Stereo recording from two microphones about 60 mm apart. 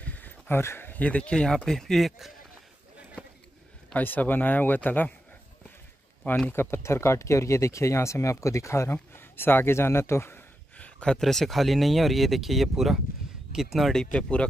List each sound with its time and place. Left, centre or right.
0.0 s a sound: left
0.6 s speech: left; by 2.3 s centre
3.9 s speech: left
6.5 s speech: left
9.1 s a man's voice: left
10.8 s a sound: centre
11.1 s speech: centre
13.9 s speech: centre